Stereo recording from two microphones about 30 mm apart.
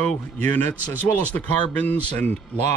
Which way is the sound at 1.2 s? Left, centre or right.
Left.